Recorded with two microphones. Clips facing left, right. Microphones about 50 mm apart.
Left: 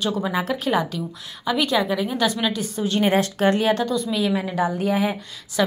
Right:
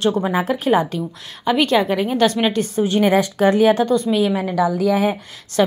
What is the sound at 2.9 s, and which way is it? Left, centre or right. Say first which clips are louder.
Speech: right 3 dB; right.